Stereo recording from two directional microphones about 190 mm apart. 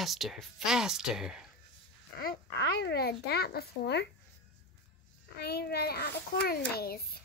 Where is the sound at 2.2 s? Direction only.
55° left (ahead or behind).